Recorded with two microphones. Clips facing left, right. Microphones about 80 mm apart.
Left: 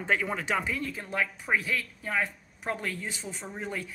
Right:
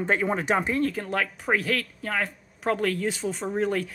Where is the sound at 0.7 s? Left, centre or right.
Right.